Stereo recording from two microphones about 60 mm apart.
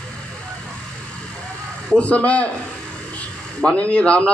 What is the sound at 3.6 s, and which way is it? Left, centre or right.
Speech, left.